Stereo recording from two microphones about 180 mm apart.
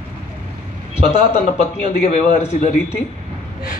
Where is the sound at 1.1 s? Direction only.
40° left (ahead or behind).